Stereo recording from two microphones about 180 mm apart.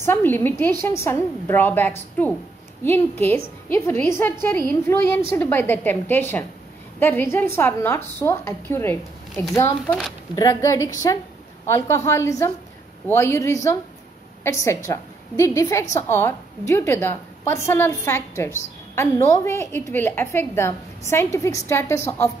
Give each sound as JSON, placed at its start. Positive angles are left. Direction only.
{"t": 0.0, "sound": "a woman's voice", "side_deg": 10}
{"t": 9.6, "sound": "a woman's voice", "side_deg": 15}